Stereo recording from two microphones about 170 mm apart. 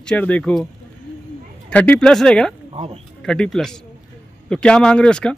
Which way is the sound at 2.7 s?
35° right (ahead or behind).